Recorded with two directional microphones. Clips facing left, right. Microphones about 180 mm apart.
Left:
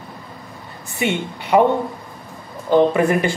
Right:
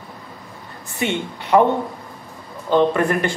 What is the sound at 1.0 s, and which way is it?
Speech, 10° left (ahead or behind).